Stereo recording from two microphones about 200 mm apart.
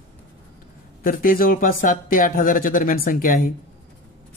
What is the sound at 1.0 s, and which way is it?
Speech, 45° left (ahead or behind).